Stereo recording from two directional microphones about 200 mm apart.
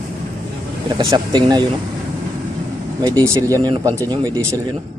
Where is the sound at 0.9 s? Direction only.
20° right (ahead or behind).